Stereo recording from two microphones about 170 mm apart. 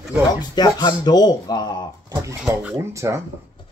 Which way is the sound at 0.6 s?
25° left (ahead or behind).